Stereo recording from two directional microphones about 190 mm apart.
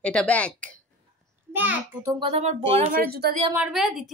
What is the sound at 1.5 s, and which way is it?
Speech, 10° right (ahead or behind).